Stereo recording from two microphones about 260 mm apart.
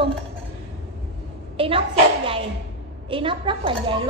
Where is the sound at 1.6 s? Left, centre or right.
Centre.